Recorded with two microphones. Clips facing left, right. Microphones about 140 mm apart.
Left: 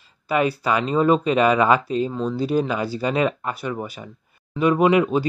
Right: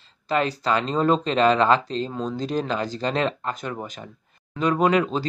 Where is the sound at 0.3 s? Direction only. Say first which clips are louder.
Left 2 dB; 10° left (ahead or behind).